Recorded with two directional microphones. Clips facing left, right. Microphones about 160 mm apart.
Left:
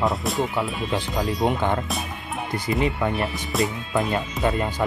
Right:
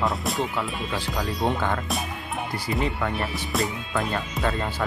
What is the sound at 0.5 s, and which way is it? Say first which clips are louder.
Speech: left 4 dB; 20° left (ahead or behind).